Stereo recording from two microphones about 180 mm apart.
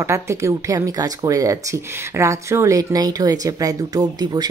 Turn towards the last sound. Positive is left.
turn(degrees=-20)  # may be behind; listen again after turning